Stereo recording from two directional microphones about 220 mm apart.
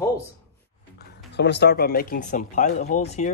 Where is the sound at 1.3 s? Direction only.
50° left (ahead or behind); by 3.3 s 30° left (ahead or behind).